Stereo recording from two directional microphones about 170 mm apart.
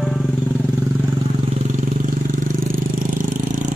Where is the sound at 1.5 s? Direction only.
45° right (ahead or behind).